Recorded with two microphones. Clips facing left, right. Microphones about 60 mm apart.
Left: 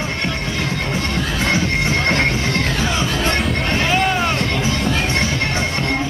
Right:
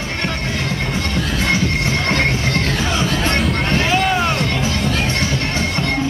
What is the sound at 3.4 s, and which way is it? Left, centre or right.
Music, centre.